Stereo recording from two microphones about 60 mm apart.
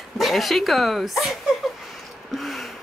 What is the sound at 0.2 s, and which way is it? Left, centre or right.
Speech, centre.